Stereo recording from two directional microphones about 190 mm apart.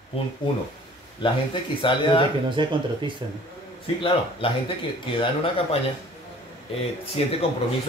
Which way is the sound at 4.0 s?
25° left (ahead or behind).